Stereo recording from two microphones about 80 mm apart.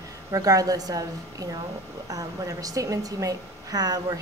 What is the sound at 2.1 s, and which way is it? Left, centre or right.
A woman's voice, right.